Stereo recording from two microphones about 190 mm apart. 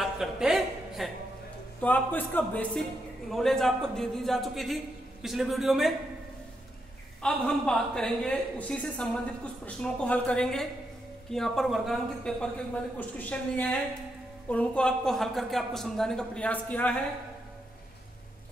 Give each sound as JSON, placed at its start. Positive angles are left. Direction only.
{"t": 0.0, "sound": "a sound", "side_deg": 0}
{"t": 1.8, "sound": "a man's voice", "side_deg": 10}
{"t": 7.2, "sound": "a woman's voice", "side_deg": 5}